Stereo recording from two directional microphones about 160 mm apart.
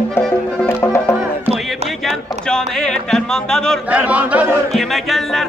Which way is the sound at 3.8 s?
10° right (ahead or behind).